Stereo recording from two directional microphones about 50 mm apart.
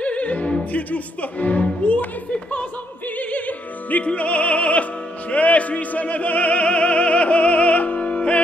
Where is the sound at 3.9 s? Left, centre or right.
Left.